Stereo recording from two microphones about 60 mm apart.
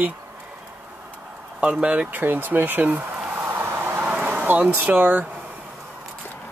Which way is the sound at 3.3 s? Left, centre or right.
Right.